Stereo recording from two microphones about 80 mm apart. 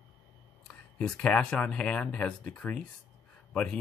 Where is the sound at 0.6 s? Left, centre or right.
Centre.